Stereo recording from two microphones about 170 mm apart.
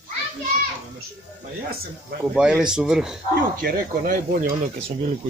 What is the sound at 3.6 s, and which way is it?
Speech, 55° right (ahead or behind).